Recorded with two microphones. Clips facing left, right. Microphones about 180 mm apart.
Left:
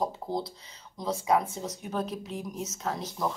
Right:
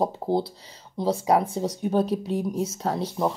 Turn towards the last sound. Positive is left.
turn(degrees=-30)  # may be behind; listen again after turning